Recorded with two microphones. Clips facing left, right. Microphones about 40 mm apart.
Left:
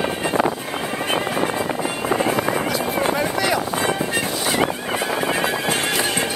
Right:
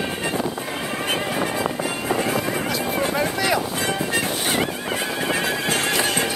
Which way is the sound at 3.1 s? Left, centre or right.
Centre.